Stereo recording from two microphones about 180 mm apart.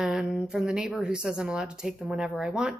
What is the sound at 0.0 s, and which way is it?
A woman's voice, 5° right (ahead or behind).